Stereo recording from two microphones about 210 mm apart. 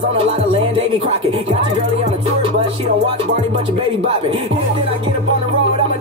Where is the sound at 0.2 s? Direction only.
30° right (ahead or behind).